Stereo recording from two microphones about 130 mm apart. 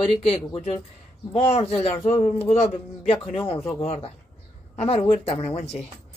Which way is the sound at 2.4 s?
50° left (ahead or behind).